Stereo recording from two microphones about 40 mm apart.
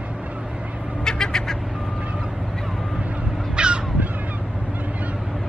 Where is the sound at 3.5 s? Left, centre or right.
Right.